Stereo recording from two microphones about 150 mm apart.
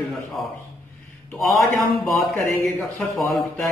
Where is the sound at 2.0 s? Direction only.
Centre (ahead or behind).